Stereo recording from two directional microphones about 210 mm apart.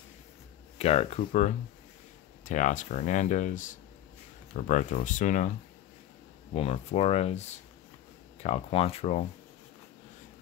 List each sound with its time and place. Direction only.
0.7 s speech: 30° left (ahead or behind)
6.5 s speech: 30° left (ahead or behind)